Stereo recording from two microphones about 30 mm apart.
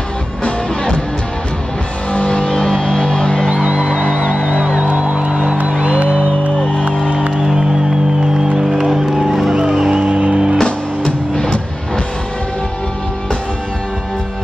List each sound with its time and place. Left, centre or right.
2.1 s music: left
4.5 s music: right
8.9 s music: centre
9.8 s music: right
11.1 s music: left